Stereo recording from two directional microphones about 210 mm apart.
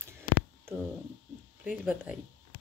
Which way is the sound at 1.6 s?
5° right (ahead or behind).